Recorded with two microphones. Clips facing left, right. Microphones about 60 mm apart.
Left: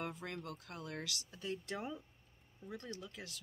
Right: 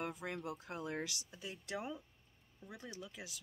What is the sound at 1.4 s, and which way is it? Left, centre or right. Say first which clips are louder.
Speech: left 2 dB; centre.